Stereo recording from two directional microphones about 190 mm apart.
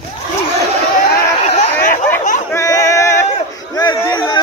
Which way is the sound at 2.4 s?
15° left (ahead or behind).